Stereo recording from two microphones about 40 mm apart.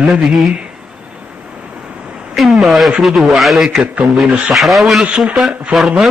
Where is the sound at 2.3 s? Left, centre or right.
Centre.